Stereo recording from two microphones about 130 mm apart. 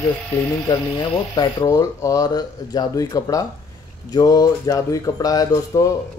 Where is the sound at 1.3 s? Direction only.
35° left (ahead or behind).